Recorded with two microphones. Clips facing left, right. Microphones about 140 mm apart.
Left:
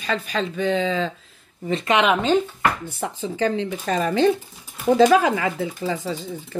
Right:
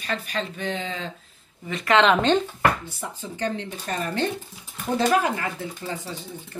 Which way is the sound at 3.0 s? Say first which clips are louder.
Left 8 dB; 80° left.